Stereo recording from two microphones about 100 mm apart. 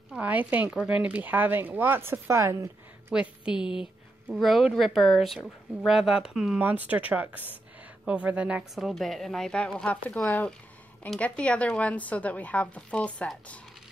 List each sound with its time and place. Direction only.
0.1 s a woman's voice: 15° right (ahead or behind)
3.1 s a woman's voice: 10° right (ahead or behind)
8.7 s a woman's voice: centre (ahead or behind)
11.1 s speech: 10° left (ahead or behind)